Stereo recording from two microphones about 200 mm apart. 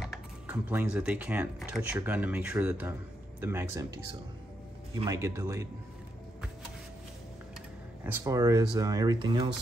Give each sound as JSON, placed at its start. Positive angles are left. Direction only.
{"t": 0.0, "sound": "speech", "side_deg": -5}
{"t": 8.0, "sound": "speech", "side_deg": -10}